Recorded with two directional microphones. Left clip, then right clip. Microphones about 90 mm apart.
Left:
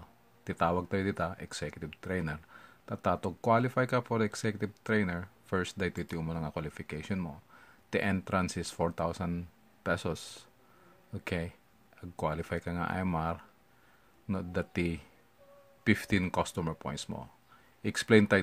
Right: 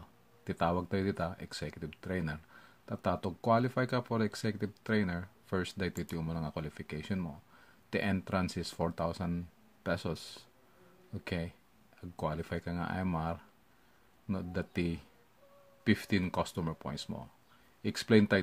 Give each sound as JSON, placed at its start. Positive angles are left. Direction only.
{"t": 0.4, "sound": "speech", "side_deg": 15}